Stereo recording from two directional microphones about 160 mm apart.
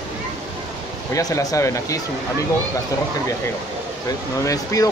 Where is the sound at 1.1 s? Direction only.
20° left (ahead or behind).